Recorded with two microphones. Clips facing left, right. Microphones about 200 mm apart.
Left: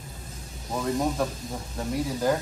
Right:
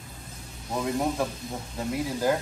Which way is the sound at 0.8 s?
5° right (ahead or behind).